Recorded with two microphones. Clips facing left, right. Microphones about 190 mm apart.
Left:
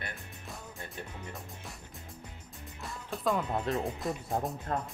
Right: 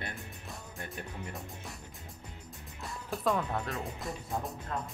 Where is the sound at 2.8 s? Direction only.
Centre (ahead or behind).